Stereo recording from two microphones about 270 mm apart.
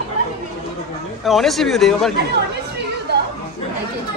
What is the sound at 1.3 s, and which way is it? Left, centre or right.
Speech, centre.